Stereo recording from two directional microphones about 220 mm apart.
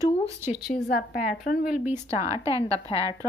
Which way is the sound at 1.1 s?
45° left (ahead or behind).